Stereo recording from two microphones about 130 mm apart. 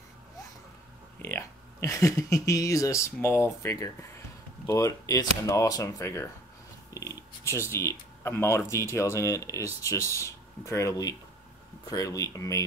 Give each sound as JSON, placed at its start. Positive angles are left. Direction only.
{"t": 1.2, "sound": "speech", "side_deg": 20}